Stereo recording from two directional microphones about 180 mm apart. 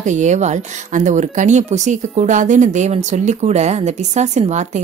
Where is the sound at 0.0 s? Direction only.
40° right (ahead or behind).